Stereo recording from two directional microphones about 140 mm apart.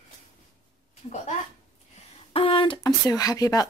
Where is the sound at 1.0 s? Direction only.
45° left (ahead or behind).